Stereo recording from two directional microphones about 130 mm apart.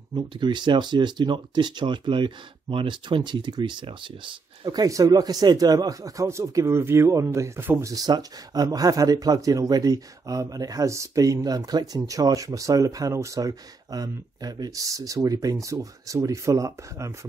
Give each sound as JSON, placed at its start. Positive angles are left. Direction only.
{"t": 0.1, "sound": "speech", "side_deg": -35}